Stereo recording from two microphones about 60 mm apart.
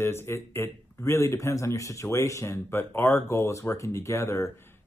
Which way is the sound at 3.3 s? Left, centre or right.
Left.